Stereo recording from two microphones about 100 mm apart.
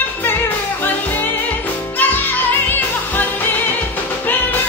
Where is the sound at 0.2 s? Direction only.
20° left (ahead or behind).